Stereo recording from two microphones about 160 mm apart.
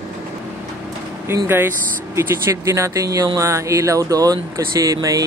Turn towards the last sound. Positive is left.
turn(degrees=-20)  # may be behind; listen again after turning